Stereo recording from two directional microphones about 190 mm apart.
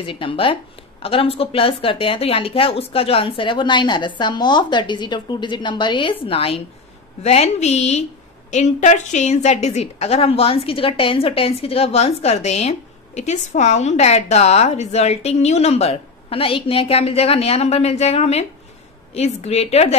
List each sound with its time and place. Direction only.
0.0 s a woman's voice: 25° left (ahead or behind)